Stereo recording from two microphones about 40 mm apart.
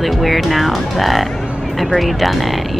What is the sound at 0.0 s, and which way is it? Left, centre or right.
Speech, centre.